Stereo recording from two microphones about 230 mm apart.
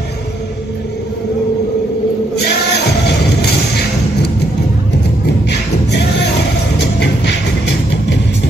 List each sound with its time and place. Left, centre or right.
2.4 s music: left
5.9 s music: left